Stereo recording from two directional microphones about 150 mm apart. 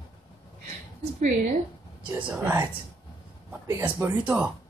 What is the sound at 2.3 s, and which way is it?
Speech, 15° right (ahead or behind).